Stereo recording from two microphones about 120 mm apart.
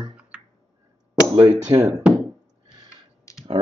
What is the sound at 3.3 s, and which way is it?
Clicking, 25° left (ahead or behind).